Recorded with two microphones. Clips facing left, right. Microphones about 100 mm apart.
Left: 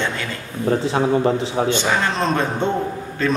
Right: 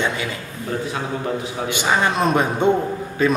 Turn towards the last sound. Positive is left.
turn(degrees=-10)  # may be behind; listen again after turning